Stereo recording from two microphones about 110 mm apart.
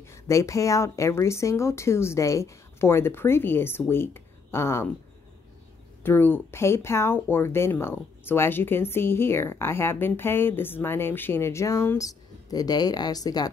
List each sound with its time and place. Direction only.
0.0 s speech: 25° left (ahead or behind)
6.0 s speech: 20° left (ahead or behind); by 13.5 s 35° left (ahead or behind)